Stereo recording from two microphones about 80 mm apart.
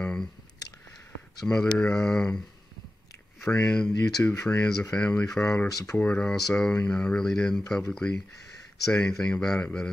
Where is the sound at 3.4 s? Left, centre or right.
Centre.